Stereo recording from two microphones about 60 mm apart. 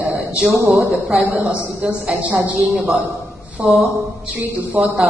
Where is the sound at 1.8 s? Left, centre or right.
Right.